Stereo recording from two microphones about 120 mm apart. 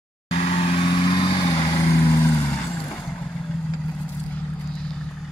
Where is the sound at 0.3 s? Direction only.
60° left (ahead or behind); by 1.5 s 45° left (ahead or behind).